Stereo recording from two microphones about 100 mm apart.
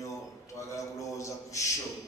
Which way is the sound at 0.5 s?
30° left (ahead or behind).